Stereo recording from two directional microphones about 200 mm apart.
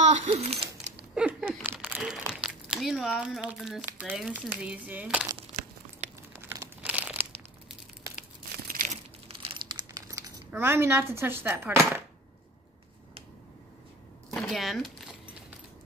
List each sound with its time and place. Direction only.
0.0 s a sound: 35° right (ahead or behind)
1.1 s speech: 5° right (ahead or behind)
6.5 s crumpling: 10° right (ahead or behind)
8.6 s a sound: 40° right (ahead or behind)
9.4 s crumpling: 25° right (ahead or behind)
14.3 s crumpling: centre (ahead or behind)